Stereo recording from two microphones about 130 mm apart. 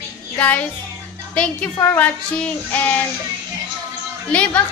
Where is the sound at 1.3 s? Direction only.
10° left (ahead or behind).